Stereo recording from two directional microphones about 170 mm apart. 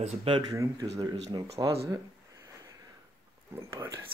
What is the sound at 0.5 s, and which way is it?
Speech, 20° right (ahead or behind).